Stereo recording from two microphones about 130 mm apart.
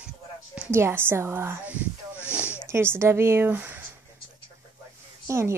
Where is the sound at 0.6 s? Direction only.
20° right (ahead or behind).